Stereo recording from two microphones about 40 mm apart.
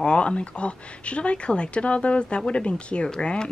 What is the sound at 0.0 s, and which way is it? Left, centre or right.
A woman's voice, left.